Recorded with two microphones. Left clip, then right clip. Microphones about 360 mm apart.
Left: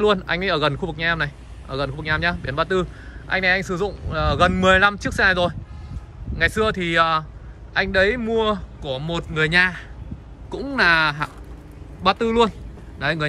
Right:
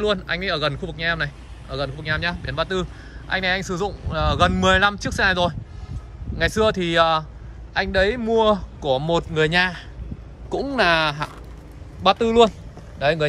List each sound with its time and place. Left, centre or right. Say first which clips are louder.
0.0 s a man's voice: left 3 dB; centre